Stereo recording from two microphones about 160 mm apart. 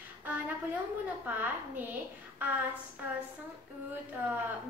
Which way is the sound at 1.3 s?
10° right (ahead or behind).